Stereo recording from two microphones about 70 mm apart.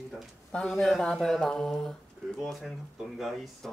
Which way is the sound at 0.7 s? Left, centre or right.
Centre.